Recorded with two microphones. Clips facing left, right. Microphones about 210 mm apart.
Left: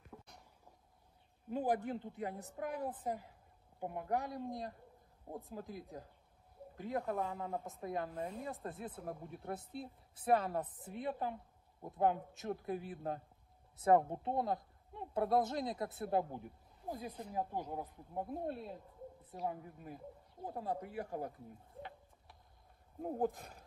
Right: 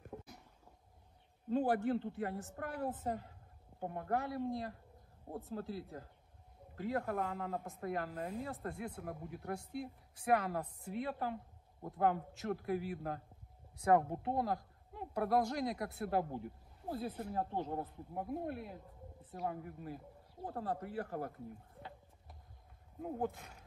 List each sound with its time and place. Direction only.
0.1 s a sound: 30° right (ahead or behind)
1.5 s a woman's voice: 15° left (ahead or behind)
18.3 s a woman's voice: 25° left (ahead or behind)
22.9 s speech: 40° left (ahead or behind)